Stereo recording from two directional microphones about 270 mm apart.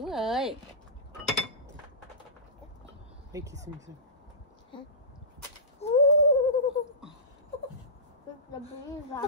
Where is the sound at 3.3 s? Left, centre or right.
Centre.